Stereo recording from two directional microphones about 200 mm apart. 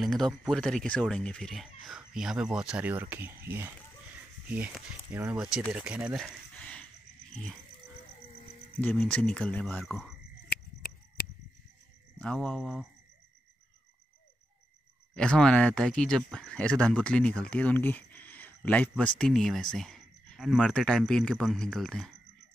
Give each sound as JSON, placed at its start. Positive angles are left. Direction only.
{"t": 0.0, "sound": "speech", "side_deg": 0}
{"t": 8.8, "sound": "speech", "side_deg": 5}
{"t": 12.2, "sound": "speech", "side_deg": 5}
{"t": 15.1, "sound": "speech", "side_deg": 5}